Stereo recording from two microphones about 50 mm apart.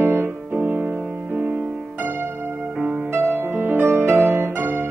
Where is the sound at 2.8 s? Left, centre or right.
Right.